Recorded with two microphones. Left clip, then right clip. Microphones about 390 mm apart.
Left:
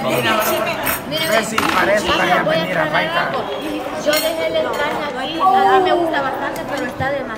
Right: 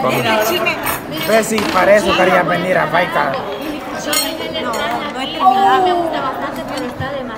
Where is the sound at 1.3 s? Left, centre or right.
Right.